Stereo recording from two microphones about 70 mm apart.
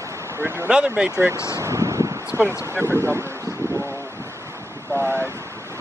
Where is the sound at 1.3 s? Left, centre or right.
Left.